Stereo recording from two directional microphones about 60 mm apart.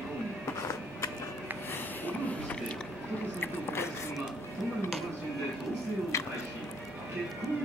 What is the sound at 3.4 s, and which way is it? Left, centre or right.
Biting, left.